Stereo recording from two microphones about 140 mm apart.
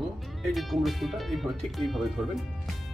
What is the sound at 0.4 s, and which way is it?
Speech, centre (ahead or behind).